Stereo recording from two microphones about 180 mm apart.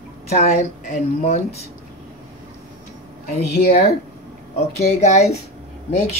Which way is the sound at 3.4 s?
65° left (ahead or behind).